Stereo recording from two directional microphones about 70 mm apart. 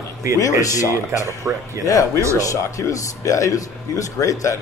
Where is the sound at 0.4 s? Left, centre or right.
Left.